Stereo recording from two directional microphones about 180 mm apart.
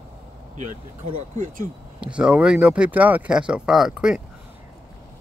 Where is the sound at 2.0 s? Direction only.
5° right (ahead or behind).